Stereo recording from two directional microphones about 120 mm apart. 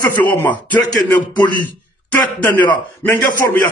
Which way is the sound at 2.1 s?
15° left (ahead or behind).